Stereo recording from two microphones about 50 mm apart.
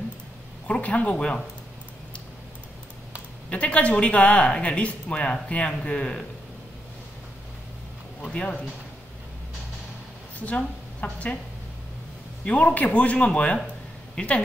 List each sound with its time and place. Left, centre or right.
0.7 s speech: left
3.4 s speech: left
8.3 s speech: centre
10.4 s speech: left
12.4 s speech: left